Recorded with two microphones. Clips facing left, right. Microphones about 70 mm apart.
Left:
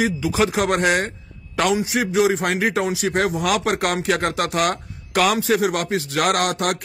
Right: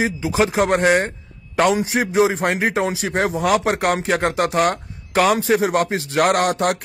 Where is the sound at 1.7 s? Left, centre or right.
Right.